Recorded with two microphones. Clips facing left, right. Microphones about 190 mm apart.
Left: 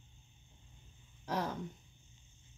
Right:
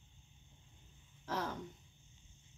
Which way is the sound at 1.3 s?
15° left (ahead or behind).